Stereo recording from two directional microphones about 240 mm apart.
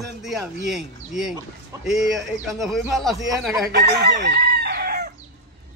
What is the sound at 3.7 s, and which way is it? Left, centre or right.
Chicken, right.